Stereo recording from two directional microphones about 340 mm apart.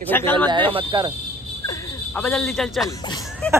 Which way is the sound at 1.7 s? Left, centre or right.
Centre.